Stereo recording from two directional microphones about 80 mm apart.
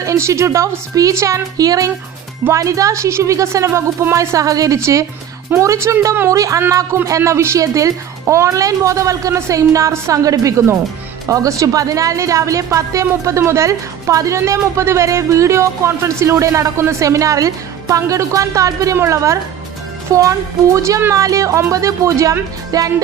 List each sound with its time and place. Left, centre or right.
0.0 s a woman's voice: right